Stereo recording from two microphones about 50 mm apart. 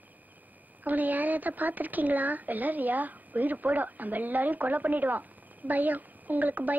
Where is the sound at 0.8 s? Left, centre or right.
Right.